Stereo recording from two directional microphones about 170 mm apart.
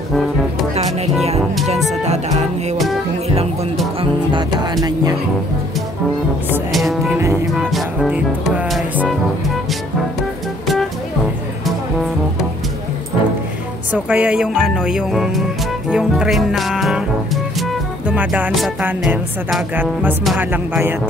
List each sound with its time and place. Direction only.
2.0 s music: 40° right (ahead or behind)
4.0 s music: 25° right (ahead or behind)
6.7 s music: centre (ahead or behind)
13.9 s music: 10° right (ahead or behind)
18.9 s speech: 10° right (ahead or behind)